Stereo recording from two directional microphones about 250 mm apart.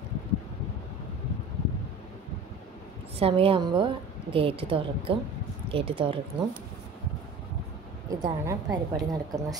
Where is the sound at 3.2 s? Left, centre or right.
Right.